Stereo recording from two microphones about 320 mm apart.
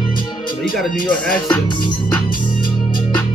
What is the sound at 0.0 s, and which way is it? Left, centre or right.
Music, centre.